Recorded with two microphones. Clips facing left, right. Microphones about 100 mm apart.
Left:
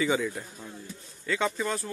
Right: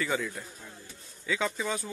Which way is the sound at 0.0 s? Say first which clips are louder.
Left 4 dB; 5° left (ahead or behind).